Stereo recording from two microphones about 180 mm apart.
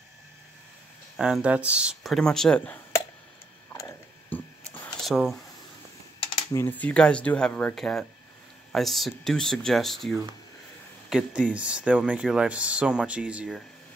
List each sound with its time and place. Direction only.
1.1 s speech: 5° right (ahead or behind)
3.7 s a sound: 10° left (ahead or behind)
6.5 s speech: 10° left (ahead or behind); by 13.6 s 5° right (ahead or behind)